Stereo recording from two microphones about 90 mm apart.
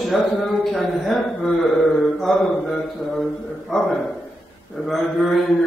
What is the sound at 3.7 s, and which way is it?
A man's voice, 5° left (ahead or behind).